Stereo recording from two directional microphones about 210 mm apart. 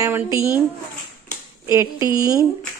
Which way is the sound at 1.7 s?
15° right (ahead or behind).